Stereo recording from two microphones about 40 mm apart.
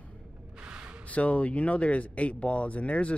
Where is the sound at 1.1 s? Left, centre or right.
Left.